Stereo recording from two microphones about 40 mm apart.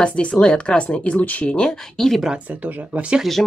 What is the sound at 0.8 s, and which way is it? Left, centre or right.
Speech, left.